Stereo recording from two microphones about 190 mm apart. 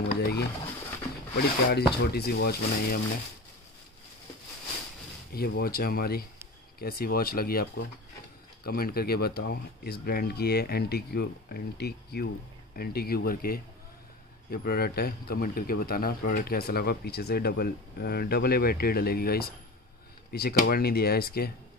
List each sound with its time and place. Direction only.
0.0 s a sound: 60° left (ahead or behind)
1.7 s speech: 60° left (ahead or behind)
5.3 s speech: 55° left (ahead or behind)